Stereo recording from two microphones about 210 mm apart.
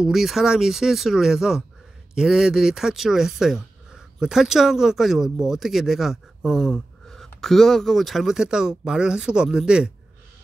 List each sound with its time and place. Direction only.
0.0 s speech: centre (ahead or behind)